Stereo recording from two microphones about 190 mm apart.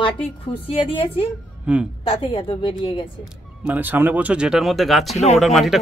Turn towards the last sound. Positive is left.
turn(degrees=0)  # may be behind; listen again after turning